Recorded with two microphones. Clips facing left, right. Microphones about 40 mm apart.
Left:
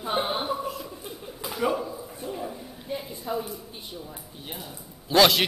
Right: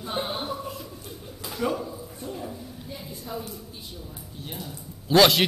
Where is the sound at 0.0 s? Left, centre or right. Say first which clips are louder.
Left 3 dB; centre.